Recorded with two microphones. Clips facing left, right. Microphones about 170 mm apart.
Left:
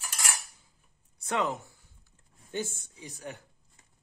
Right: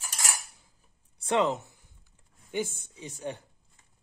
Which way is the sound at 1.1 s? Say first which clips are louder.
Right 4 dB; 30° right (ahead or behind).